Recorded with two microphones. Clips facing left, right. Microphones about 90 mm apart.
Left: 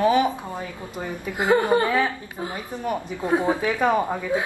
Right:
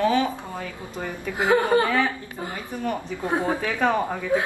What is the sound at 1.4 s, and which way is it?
Speech, 10° left (ahead or behind).